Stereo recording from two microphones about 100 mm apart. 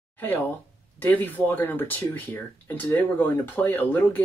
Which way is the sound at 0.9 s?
20° left (ahead or behind).